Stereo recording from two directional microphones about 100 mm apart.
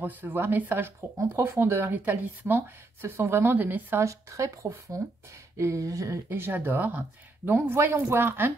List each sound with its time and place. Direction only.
0.0 s speech: 20° right (ahead or behind)
5.6 s a sound: 30° right (ahead or behind)
6.2 s speech: 20° right (ahead or behind)